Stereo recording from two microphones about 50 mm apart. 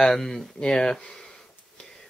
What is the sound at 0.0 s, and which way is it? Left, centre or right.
Speech, centre.